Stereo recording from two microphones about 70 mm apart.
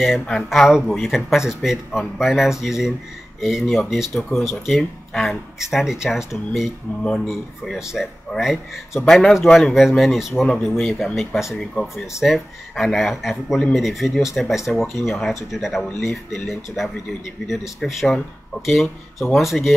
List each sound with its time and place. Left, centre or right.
0.2 s speech: centre
0.7 s speech: centre
7.0 s speech: centre